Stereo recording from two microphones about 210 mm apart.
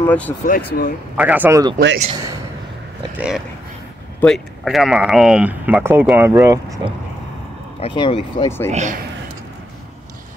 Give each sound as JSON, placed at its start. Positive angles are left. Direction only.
{"t": 0.0, "sound": "speech", "side_deg": 5}
{"t": 0.5, "sound": "speech", "side_deg": 45}
{"t": 1.1, "sound": "speech", "side_deg": -10}
{"t": 3.2, "sound": "speech", "side_deg": -5}
{"t": 7.8, "sound": "speech", "side_deg": 25}
{"t": 8.6, "sound": "a man's voice", "side_deg": -35}